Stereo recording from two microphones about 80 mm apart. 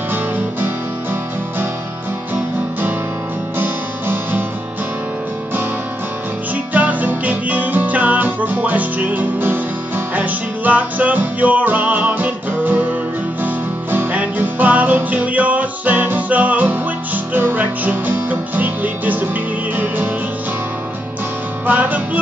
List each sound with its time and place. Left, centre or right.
3.5 s music: right
6.7 s music: centre
21.6 s music: right